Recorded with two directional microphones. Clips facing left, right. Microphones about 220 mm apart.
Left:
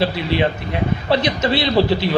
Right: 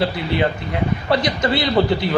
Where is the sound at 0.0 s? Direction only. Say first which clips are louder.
Left 1 dB; 20° left (ahead or behind).